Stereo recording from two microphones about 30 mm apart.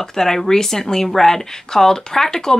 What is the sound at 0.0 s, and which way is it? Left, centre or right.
Speech, centre.